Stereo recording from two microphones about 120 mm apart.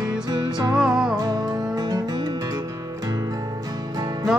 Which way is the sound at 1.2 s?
35° right (ahead or behind).